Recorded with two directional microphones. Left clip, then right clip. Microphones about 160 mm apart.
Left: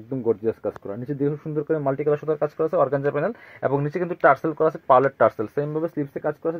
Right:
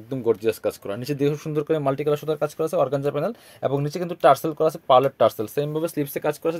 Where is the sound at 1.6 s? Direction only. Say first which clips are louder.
Even; 40° right (ahead or behind).